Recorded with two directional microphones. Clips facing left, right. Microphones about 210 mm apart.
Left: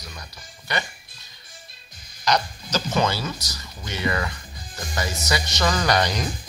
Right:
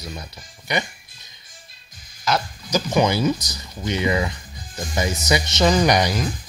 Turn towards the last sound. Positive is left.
turn(degrees=-10)  # may be behind; listen again after turning